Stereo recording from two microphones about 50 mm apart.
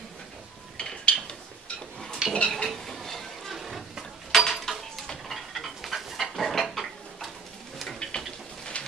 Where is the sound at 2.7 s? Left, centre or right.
Centre.